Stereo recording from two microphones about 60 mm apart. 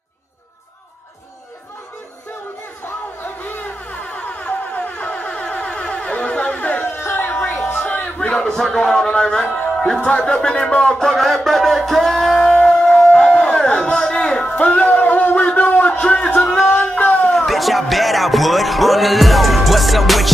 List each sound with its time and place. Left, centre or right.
3.2 s music: left
7.0 s music: left
7.7 s speech: left; by 12.5 s centre
12.6 s crowd: centre
14.7 s a sound: left
16.0 s speech: centre
16.3 s music: centre
17.3 s speech: centre